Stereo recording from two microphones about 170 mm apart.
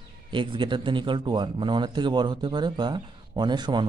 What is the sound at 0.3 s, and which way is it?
Speech, 30° right (ahead or behind).